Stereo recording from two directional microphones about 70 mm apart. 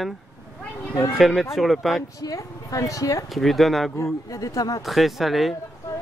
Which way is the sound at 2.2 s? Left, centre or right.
Left.